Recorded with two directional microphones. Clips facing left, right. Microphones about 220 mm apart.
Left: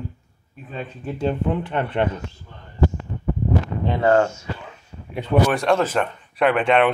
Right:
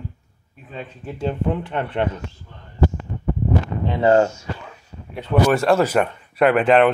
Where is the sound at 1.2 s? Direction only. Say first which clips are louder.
Even; centre (ahead or behind).